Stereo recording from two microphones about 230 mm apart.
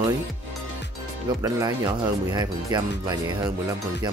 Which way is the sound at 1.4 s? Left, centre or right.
Centre.